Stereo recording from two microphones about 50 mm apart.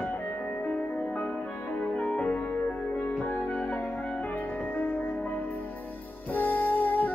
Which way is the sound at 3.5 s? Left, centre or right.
Left.